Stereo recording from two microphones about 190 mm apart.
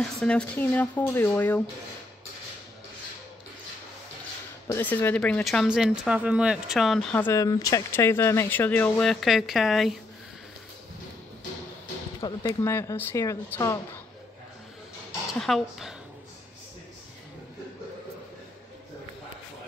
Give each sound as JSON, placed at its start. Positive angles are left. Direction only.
{"t": 0.0, "sound": "speech", "side_deg": 5}
{"t": 4.6, "sound": "speech", "side_deg": 10}
{"t": 12.2, "sound": "speech", "side_deg": 20}
{"t": 15.3, "sound": "speech", "side_deg": 0}